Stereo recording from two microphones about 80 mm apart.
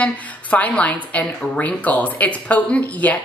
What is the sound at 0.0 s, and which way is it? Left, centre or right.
A woman's voice, centre.